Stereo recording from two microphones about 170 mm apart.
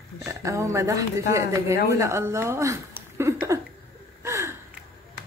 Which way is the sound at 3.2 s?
15° right (ahead or behind).